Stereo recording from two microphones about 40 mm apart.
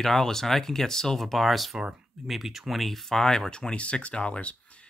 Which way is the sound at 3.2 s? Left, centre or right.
Centre.